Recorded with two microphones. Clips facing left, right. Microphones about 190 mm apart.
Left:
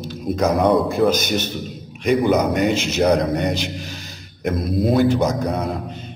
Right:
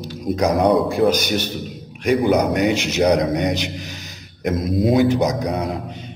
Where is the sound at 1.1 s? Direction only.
10° right (ahead or behind).